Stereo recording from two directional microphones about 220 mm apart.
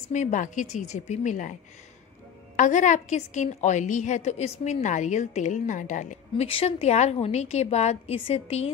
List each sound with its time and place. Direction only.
0.1 s a woman's voice: 35° left (ahead or behind)